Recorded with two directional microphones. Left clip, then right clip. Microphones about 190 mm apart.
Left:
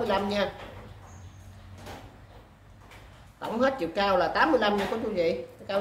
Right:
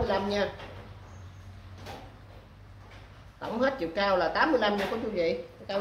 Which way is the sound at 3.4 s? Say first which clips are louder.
Left 2 dB; 10° left (ahead or behind).